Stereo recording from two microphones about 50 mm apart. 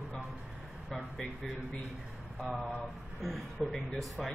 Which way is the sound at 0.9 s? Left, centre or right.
Centre.